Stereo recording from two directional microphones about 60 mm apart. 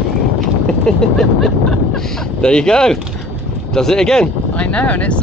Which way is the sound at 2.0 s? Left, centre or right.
Centre.